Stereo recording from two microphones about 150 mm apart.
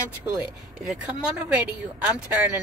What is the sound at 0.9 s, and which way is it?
Speech, 5° right (ahead or behind).